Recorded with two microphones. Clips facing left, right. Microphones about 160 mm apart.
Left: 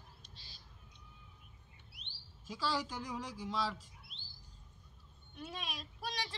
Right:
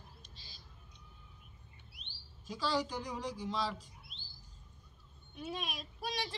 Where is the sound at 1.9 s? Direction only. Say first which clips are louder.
Even; 70° left (ahead or behind).